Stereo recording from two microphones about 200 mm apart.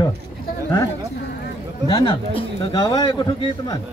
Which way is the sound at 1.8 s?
25° left (ahead or behind).